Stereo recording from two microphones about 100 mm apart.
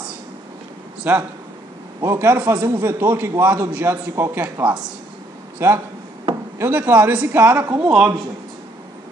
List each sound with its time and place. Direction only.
1.0 s a man's voice: 15° right (ahead or behind)
4.6 s a man's voice: 5° right (ahead or behind)
5.6 s a man's voice: 25° right (ahead or behind)